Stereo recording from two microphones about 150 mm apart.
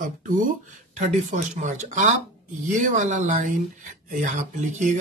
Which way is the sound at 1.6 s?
55° right (ahead or behind).